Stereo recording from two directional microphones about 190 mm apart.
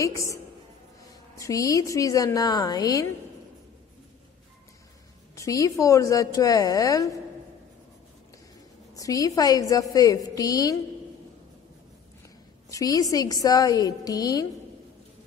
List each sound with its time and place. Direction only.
0.0 s a woman's voice: 15° left (ahead or behind)
1.4 s a woman's voice: 15° left (ahead or behind)
5.3 s a woman's voice: 15° left (ahead or behind)
8.9 s a woman's voice: 20° left (ahead or behind)
12.6 s a woman's voice: 20° left (ahead or behind)